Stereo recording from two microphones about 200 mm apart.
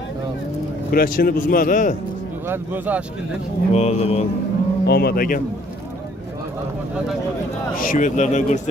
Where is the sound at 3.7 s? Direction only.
30° left (ahead or behind).